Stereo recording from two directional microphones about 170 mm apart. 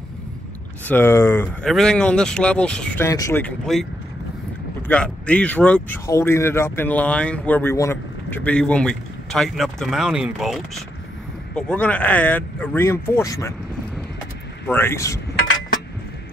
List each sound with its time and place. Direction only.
0.8 s speech: 10° left (ahead or behind)
1.6 s speech: 5° left (ahead or behind)
4.8 s speech: 5° left (ahead or behind)
14.7 s speech: 15° left (ahead or behind)